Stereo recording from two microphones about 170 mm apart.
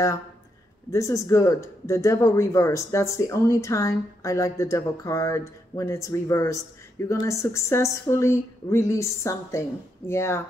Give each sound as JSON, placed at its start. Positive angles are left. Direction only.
{"t": 0.9, "sound": "speech", "side_deg": 20}